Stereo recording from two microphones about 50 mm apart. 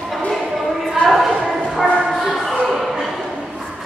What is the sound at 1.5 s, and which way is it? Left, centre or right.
Music, centre.